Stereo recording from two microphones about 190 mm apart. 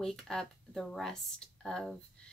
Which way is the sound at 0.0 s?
Centre (ahead or behind).